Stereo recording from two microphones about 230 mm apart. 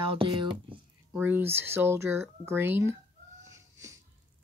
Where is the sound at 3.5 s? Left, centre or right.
Centre.